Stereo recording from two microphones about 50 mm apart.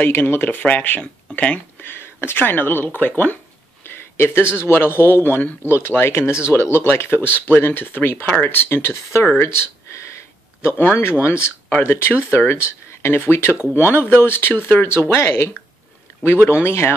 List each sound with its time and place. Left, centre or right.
0.0 s speech: left
1.8 s speech: left
3.8 s speech: left
9.8 s a sound: left
10.8 s speech: left
13.2 s speech: left